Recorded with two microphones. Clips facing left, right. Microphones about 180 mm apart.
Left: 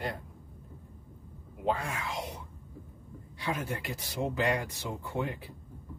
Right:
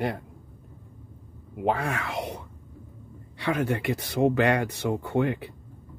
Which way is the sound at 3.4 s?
65° right (ahead or behind).